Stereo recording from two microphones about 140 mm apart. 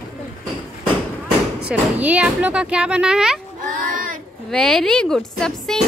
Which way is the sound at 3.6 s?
75° right (ahead or behind).